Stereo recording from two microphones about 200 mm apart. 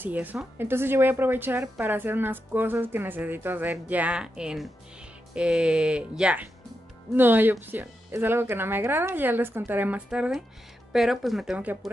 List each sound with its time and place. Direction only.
0.0 s a woman's voice: 10° right (ahead or behind)